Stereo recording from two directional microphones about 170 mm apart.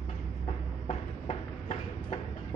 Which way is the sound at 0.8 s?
40° left (ahead or behind).